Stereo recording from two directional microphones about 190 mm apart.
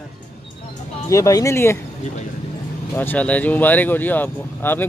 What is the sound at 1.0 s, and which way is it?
Speech, 15° left (ahead or behind).